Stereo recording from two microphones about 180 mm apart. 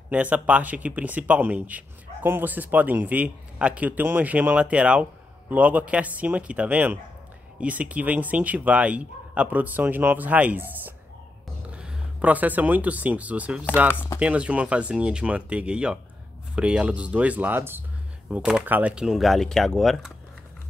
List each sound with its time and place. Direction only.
0.1 s speech: 10° right (ahead or behind)
13.9 s speech: 10° left (ahead or behind)
14.2 s speech: 5° right (ahead or behind)